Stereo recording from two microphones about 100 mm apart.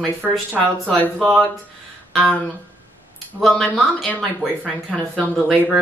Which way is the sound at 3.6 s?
15° left (ahead or behind).